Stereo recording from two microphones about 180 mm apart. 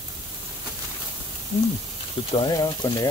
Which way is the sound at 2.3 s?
25° left (ahead or behind).